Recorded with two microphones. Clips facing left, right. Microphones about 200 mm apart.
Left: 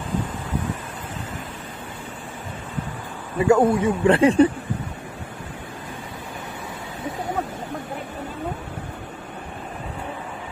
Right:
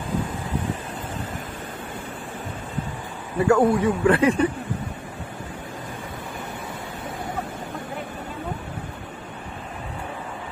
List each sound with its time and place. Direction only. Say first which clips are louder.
3.4 s speech: left 1 dB; 20° left (ahead or behind)